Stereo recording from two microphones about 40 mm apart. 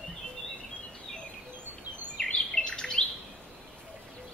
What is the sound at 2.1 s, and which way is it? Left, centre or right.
Chirp, left.